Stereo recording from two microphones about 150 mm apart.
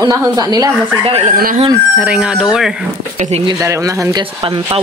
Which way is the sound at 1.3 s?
75° right (ahead or behind).